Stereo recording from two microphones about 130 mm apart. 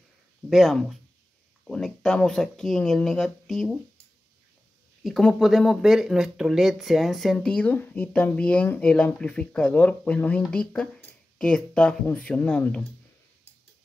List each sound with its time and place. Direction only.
0.5 s speech: centre (ahead or behind)
5.0 s speech: centre (ahead or behind)